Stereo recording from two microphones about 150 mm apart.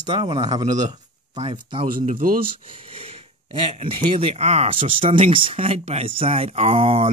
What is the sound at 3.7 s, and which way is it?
Speech, 35° right (ahead or behind).